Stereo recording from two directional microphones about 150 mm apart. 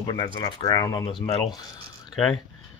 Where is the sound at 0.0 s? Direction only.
25° left (ahead or behind).